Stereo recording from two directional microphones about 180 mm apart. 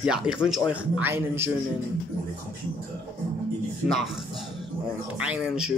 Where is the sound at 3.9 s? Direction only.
Centre (ahead or behind).